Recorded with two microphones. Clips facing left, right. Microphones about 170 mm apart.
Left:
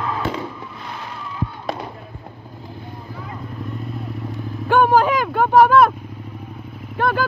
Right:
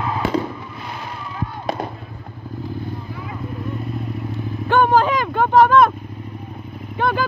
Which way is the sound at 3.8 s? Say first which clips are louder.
Right 2 dB; centre (ahead or behind).